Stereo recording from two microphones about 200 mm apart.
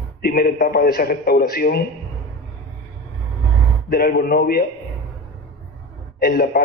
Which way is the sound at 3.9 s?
50° left (ahead or behind).